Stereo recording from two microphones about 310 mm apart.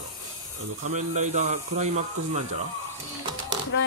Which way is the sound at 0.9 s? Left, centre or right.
Right.